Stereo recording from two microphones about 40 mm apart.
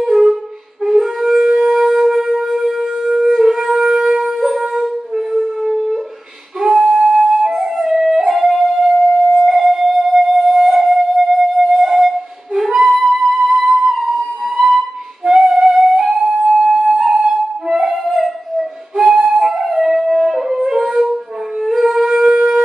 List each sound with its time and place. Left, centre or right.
0.0 s wind instrument: centre
6.9 s flute: centre
8.3 s music: centre
13.8 s flute: centre
15.2 s music: centre
16.5 s flute: centre
20.5 s wind instrument: centre
21.5 s music: centre